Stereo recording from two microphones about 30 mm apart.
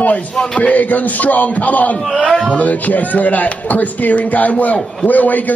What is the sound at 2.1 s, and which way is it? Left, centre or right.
Speech, centre.